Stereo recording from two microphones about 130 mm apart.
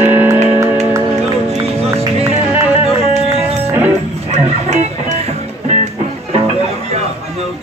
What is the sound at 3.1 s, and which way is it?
Music, 50° right (ahead or behind).